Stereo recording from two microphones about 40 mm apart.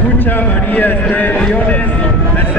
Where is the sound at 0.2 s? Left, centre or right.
Left.